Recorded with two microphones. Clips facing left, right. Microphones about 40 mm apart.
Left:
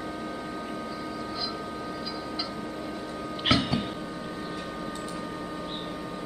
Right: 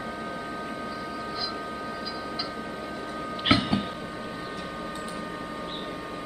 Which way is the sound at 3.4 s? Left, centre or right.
Centre.